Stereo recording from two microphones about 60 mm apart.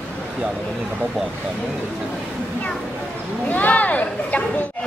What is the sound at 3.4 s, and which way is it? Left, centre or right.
Speech, left.